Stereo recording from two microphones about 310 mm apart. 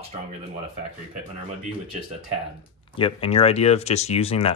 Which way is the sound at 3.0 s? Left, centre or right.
Centre.